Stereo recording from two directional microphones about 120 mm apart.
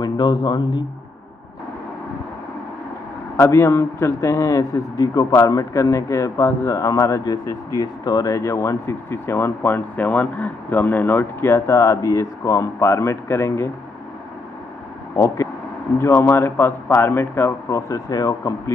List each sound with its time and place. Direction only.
0.0 s a man's voice: 40° left (ahead or behind)
3.3 s a man's voice: 20° left (ahead or behind)
15.1 s a man's voice: 25° left (ahead or behind)